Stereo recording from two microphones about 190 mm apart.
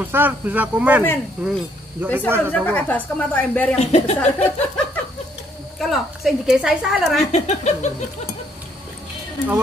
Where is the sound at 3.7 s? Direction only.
35° left (ahead or behind).